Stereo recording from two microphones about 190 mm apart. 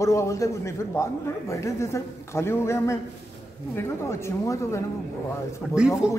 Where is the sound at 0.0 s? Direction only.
15° left (ahead or behind).